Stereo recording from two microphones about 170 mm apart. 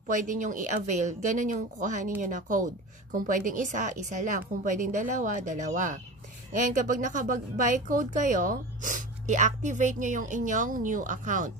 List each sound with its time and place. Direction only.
0.1 s speech: 50° right (ahead or behind)